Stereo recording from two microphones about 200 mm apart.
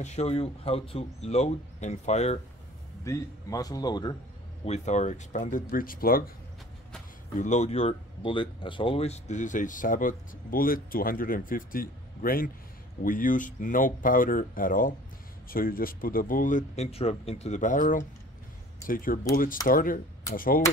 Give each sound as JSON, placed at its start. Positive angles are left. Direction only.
{"t": 0.0, "sound": "speech", "side_deg": 35}
{"t": 3.0, "sound": "speech", "side_deg": 15}
{"t": 4.6, "sound": "speech", "side_deg": 35}
{"t": 7.3, "sound": "speech", "side_deg": 35}